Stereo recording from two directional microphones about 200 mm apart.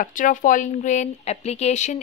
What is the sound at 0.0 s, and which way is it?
A woman's voice, 40° left (ahead or behind).